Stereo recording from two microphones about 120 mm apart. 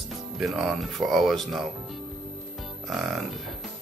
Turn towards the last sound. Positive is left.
turn(degrees=0)  # may be behind; listen again after turning